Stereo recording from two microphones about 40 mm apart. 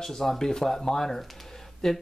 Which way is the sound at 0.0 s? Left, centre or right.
Centre.